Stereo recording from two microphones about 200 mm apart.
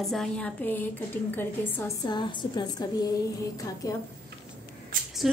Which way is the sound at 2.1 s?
20° left (ahead or behind).